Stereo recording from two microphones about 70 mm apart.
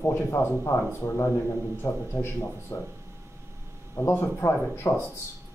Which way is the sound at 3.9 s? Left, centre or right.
Left.